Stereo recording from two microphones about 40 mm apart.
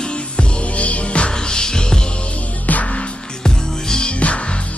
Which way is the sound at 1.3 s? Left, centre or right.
Centre.